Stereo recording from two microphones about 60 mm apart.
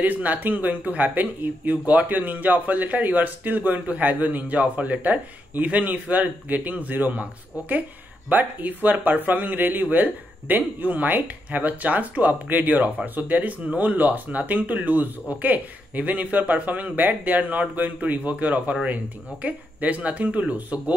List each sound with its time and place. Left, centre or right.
0.0 s speech: right